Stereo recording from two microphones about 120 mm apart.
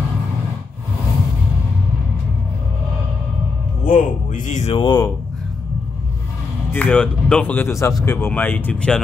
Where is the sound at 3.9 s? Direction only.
85° left.